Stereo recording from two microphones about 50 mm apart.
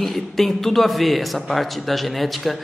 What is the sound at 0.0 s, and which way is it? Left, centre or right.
A man's voice, centre.